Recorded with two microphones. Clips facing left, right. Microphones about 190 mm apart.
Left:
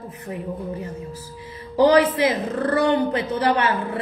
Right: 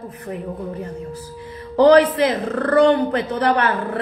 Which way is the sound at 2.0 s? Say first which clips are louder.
Right 2 dB; 20° left (ahead or behind).